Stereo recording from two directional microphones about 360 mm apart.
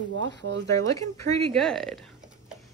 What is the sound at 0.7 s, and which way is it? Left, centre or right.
Speech, centre.